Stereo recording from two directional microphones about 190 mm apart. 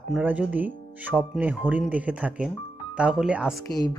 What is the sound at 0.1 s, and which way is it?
Speech, 5° right (ahead or behind).